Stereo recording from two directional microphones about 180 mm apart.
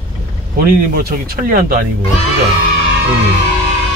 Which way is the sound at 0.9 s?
55° right (ahead or behind).